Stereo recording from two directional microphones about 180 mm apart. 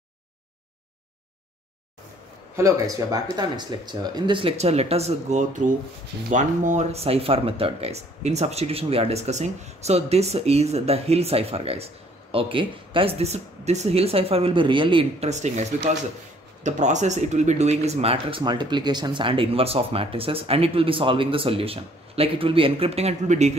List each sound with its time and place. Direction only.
2.5 s speech: 20° right (ahead or behind); by 23.5 s 40° right (ahead or behind)